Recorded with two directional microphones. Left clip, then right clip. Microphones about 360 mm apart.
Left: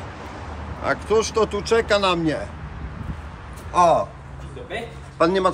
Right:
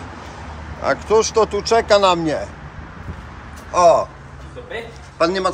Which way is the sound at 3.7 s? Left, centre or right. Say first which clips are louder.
Right 4 dB; centre.